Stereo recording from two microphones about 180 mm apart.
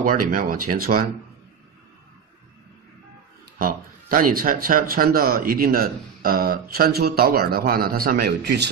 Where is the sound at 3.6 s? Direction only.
50° right (ahead or behind).